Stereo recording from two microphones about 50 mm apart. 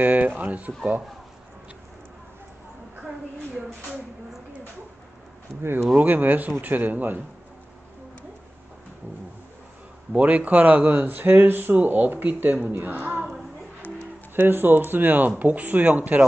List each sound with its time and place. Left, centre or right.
0.0 s speech: right
5.6 s speech: right
5.9 s speech: right
10.1 s a woman's voice: right
14.5 s speech: right